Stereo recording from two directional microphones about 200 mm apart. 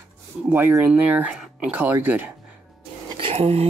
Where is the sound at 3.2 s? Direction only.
30° right (ahead or behind).